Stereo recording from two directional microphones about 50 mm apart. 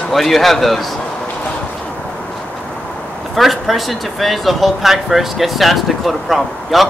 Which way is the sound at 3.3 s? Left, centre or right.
Centre.